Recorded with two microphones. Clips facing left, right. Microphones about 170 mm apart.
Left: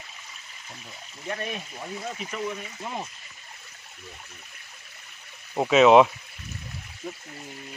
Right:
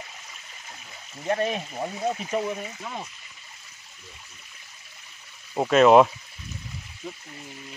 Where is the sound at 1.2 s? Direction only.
40° right (ahead or behind).